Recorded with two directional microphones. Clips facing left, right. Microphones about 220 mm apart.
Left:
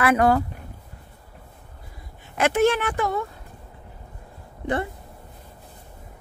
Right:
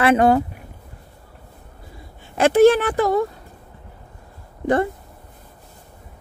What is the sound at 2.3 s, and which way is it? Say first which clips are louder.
Speech: right 7 dB; 35° right (ahead or behind).